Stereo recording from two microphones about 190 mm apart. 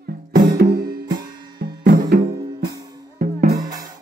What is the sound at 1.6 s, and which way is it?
Music, 55° right (ahead or behind).